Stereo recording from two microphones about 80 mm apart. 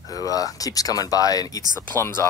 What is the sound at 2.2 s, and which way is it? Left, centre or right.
Speech, left.